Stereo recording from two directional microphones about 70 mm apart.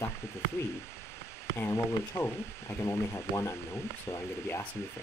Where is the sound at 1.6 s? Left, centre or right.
Left.